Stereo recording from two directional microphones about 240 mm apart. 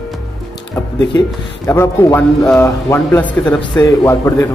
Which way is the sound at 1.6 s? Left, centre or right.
Centre.